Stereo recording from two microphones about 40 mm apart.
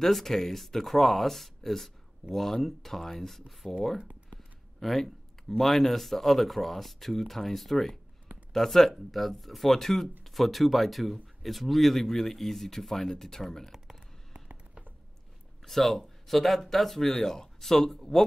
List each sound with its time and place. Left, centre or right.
0.0 s speech: centre
14.5 s a sound: right
15.6 s speech: centre